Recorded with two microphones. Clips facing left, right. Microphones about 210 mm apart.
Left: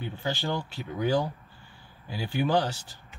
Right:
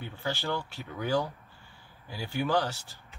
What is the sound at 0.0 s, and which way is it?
Speech, 15° left (ahead or behind).